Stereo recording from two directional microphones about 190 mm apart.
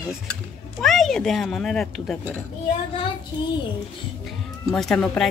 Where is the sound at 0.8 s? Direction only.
Centre (ahead or behind).